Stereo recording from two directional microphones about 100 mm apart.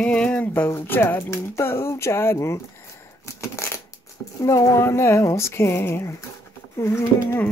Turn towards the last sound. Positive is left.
turn(degrees=30)  # may be behind; listen again after turning